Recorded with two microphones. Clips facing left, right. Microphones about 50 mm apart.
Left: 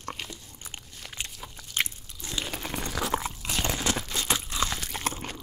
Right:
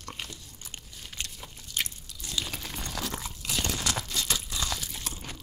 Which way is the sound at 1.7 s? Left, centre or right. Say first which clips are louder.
Left 4 dB; left.